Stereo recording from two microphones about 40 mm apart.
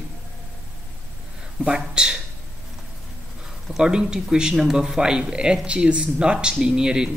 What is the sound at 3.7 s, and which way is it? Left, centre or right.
Speech, centre.